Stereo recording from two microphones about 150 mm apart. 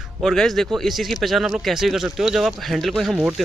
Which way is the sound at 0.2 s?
Centre (ahead or behind).